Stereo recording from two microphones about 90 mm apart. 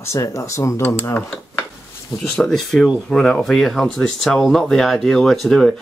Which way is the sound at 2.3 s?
5° left (ahead or behind).